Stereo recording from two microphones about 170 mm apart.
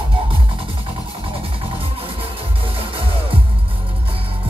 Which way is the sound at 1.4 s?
30° right (ahead or behind).